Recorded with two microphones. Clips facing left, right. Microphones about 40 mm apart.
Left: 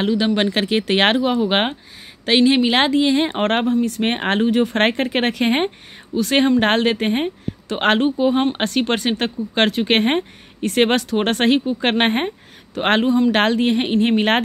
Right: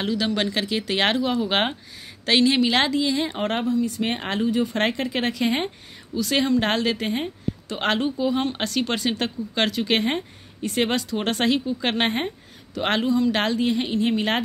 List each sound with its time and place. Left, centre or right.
0.0 s speech: left
0.5 s speech: left
1.2 s a woman's voice: left